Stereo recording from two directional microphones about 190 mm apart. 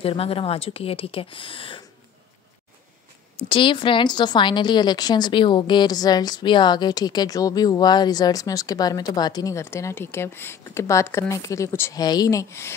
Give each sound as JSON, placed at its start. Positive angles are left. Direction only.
{"t": 0.0, "sound": "a woman's voice", "side_deg": 30}
{"t": 3.3, "sound": "a woman's voice", "side_deg": 25}